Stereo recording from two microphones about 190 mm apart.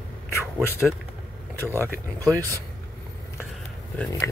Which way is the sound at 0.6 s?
10° left (ahead or behind).